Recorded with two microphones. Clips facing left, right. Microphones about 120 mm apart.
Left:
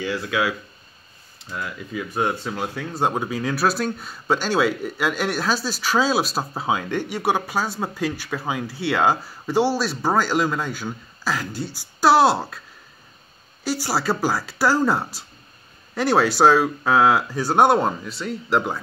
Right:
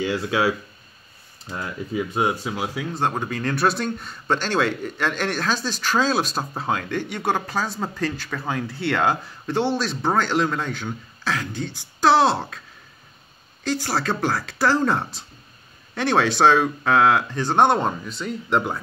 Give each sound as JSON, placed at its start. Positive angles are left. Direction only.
{"t": 0.0, "sound": "speech", "side_deg": -25}
{"t": 2.1, "sound": "speech", "side_deg": -10}
{"t": 2.9, "sound": "speech", "side_deg": 10}
{"t": 13.7, "sound": "speech", "side_deg": 10}